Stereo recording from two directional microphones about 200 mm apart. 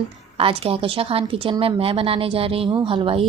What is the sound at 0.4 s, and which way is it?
Speech, 30° right (ahead or behind).